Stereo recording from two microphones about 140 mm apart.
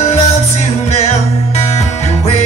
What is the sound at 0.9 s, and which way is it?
Music, 50° left (ahead or behind).